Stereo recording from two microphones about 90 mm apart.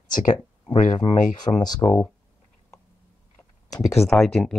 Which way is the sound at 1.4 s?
50° left (ahead or behind).